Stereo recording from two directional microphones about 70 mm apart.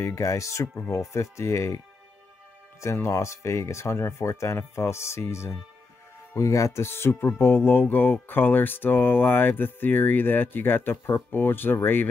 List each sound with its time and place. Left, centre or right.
0.0 s speech: left
2.8 s speech: left